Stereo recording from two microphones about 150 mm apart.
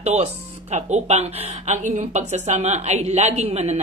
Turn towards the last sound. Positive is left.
turn(degrees=-45)  # may be behind; listen again after turning